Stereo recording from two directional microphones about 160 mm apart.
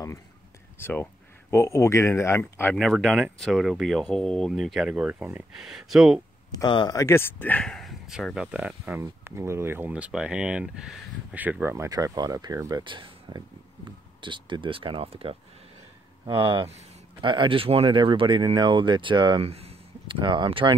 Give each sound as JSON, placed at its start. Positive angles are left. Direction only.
{"t": 0.7, "sound": "speech", "side_deg": 15}
{"t": 6.6, "sound": "speech", "side_deg": 30}
{"t": 16.3, "sound": "speech", "side_deg": -35}